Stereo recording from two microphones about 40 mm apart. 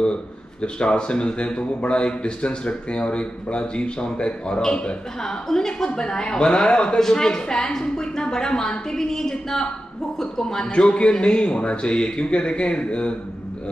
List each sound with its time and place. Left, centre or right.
0.0 s a woman's voice: left
7.0 s a woman's voice: centre